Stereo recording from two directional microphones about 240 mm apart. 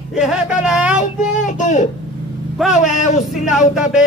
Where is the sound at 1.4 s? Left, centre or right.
Left.